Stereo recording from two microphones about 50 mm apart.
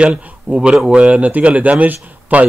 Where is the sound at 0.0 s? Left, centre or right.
Centre.